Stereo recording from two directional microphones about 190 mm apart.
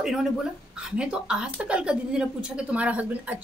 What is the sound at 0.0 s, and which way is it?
A woman's voice, 5° right (ahead or behind).